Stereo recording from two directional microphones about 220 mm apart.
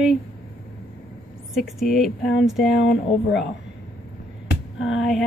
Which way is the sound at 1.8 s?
Centre (ahead or behind).